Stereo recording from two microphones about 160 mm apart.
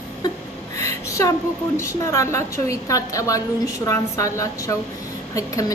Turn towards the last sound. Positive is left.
turn(degrees=20)  # may be behind; listen again after turning